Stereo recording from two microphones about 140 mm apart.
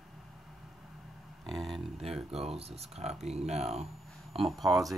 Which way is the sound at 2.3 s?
45° right (ahead or behind).